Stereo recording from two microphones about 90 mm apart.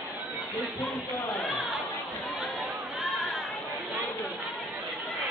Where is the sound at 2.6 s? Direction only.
Centre (ahead or behind).